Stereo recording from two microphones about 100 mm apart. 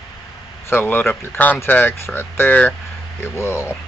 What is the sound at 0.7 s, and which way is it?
Speech, 20° left (ahead or behind).